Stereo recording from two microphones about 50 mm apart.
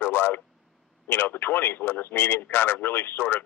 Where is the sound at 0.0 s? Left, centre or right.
Left.